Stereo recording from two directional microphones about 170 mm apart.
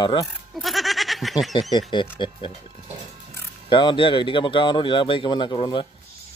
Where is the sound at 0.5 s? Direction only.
Centre (ahead or behind).